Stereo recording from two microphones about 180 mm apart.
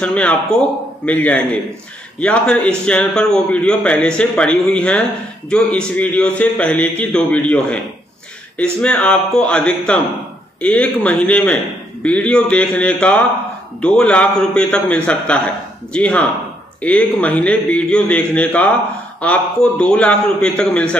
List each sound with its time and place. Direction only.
0.0 s a man's voice: 5° left (ahead or behind)
8.8 s a man's voice: 5° left (ahead or behind)